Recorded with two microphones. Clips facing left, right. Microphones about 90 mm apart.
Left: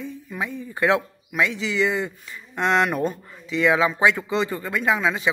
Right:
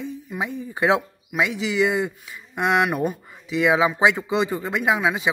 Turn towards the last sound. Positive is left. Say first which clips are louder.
# right 1 dB
turn(degrees=-15)  # may be behind; listen again after turning